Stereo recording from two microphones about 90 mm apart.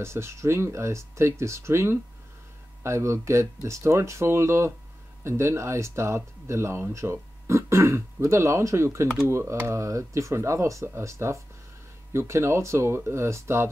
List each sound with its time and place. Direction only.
0.0 s speech: 30° right (ahead or behind)